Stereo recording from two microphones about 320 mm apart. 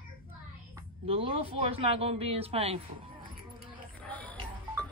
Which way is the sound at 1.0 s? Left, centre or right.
Centre.